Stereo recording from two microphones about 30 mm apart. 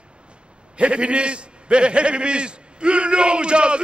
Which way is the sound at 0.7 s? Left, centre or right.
Right.